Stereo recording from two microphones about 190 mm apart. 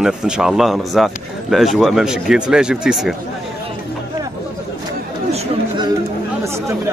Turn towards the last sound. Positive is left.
turn(degrees=-25)  # may be behind; listen again after turning